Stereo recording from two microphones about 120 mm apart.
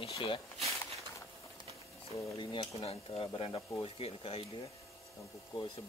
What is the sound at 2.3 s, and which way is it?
Speech, 40° left (ahead or behind).